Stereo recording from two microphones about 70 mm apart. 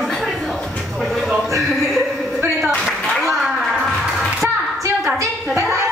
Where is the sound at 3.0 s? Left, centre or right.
Centre.